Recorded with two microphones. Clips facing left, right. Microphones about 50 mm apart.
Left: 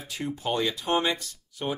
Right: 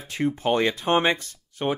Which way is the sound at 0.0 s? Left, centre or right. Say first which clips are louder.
Right 7 dB; right.